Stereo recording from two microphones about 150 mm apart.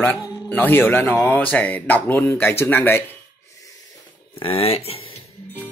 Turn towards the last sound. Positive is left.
turn(degrees=40)  # may be behind; listen again after turning